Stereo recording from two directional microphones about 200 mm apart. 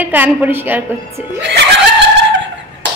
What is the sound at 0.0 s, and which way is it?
Speech, 10° right (ahead or behind).